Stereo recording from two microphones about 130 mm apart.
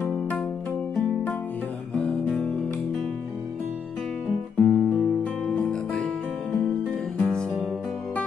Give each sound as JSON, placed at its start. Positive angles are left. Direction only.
{"t": 0.0, "sound": "music", "side_deg": 15}
{"t": 4.6, "sound": "music", "side_deg": 15}